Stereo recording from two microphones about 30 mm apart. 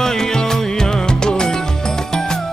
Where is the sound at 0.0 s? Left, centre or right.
Centre.